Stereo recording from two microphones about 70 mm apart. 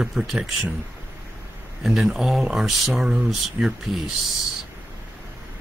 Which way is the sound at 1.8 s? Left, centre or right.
Centre.